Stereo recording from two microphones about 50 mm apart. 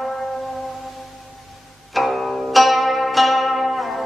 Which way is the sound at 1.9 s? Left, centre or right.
Centre.